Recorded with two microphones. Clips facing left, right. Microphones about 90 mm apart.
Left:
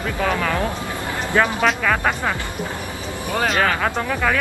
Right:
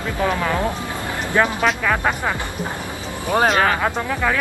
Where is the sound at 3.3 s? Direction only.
35° right (ahead or behind).